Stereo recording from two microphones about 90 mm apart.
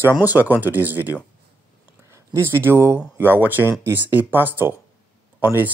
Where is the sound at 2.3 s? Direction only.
25° right (ahead or behind).